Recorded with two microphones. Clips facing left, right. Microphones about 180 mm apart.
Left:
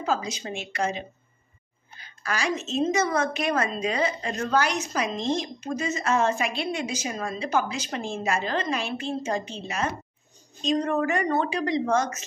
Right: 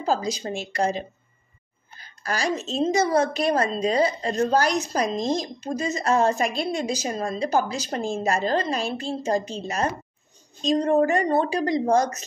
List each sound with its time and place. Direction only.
0.0 s a woman's voice: 35° right (ahead or behind)